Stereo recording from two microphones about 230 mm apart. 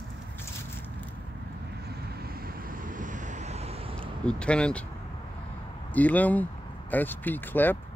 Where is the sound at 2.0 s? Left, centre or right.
Right.